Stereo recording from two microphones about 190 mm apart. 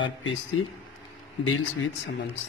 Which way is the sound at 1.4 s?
90° left.